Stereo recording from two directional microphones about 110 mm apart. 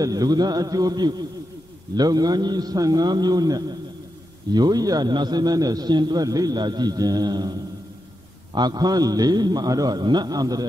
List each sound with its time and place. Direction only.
0.0 s a man's voice: 35° right (ahead or behind)
8.5 s a man's voice: 40° right (ahead or behind)